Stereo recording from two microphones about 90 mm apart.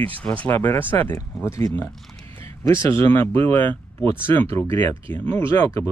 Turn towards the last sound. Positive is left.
turn(degrees=20)  # may be behind; listen again after turning